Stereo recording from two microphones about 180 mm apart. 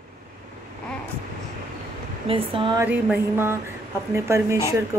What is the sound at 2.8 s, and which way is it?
Music, 10° right (ahead or behind).